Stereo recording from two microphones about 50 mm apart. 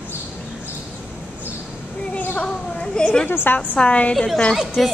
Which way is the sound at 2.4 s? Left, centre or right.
Centre.